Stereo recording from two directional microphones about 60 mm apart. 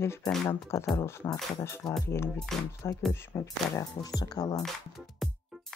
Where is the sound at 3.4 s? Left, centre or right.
Left.